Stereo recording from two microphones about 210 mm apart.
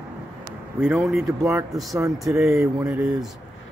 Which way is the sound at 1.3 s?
15° right (ahead or behind).